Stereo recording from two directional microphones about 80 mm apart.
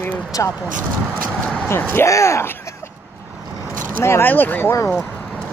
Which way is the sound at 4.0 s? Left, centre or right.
Left.